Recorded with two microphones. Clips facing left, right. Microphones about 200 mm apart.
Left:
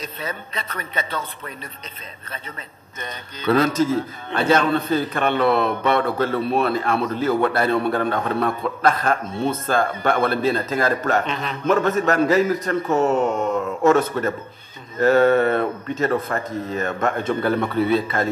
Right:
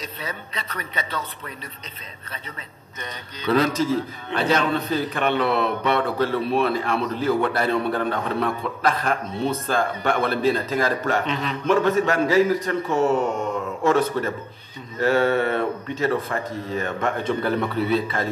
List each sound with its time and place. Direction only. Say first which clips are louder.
0.0 s a man's voice: left 3 dB; 50° left (ahead or behind)
3.0 s a man's voice: left 2 dB; 50° left (ahead or behind)